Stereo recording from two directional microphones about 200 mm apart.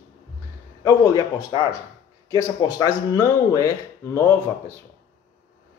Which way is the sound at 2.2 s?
15° left (ahead or behind).